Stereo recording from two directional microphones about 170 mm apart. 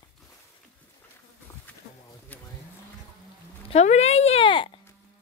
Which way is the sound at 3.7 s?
40° left (ahead or behind).